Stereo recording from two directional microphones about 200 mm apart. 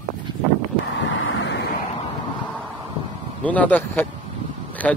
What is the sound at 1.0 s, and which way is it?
Vehicle, 65° left (ahead or behind).